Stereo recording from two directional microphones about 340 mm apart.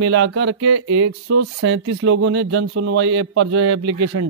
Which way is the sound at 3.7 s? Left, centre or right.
Right.